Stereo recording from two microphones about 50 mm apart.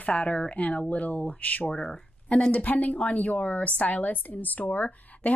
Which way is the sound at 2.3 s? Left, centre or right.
Left.